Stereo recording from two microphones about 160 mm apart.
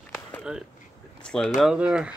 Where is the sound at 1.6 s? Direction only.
5° right (ahead or behind).